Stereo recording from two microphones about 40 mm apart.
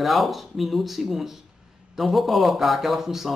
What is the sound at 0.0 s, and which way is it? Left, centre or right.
Speech, centre.